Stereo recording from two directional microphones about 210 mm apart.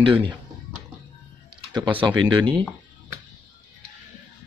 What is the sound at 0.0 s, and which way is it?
Speech, 25° right (ahead or behind).